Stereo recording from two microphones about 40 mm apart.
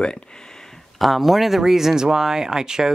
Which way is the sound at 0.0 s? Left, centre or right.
Left.